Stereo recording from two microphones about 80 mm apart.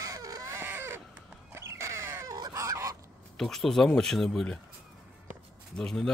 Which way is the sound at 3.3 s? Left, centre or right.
Centre.